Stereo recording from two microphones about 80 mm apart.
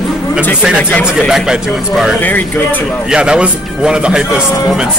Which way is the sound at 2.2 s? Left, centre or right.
Left.